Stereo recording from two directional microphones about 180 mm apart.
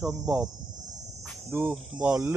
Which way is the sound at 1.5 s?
15° right (ahead or behind).